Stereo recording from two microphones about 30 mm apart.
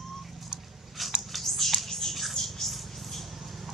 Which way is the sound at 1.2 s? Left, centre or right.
Centre.